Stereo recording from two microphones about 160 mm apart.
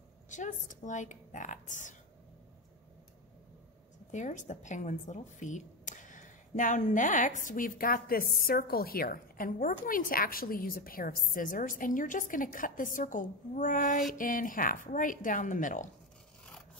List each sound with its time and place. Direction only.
0.3 s a woman's voice: 50° left (ahead or behind)
4.1 s speech: 50° left (ahead or behind)